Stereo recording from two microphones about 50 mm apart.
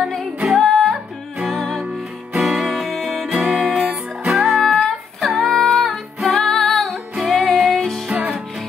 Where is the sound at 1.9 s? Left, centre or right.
Centre.